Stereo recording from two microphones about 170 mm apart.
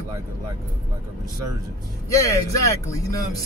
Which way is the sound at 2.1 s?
20° left (ahead or behind).